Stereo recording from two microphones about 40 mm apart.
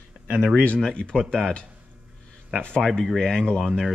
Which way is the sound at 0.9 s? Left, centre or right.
Left.